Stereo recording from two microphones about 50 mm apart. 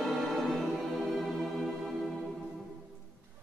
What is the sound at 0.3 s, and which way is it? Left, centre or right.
Music, centre.